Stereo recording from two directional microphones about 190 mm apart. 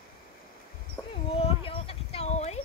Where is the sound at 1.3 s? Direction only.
30° left (ahead or behind).